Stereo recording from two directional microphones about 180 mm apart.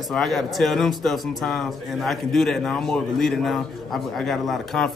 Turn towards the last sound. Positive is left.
turn(degrees=0)  # may be behind; listen again after turning